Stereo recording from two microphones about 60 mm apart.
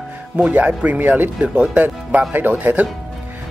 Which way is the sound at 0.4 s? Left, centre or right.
Right.